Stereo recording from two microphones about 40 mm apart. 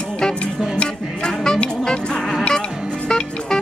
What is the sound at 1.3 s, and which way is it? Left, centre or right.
Music, centre.